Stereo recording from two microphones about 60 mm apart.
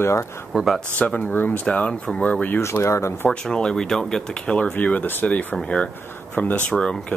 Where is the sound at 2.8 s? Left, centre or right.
Left.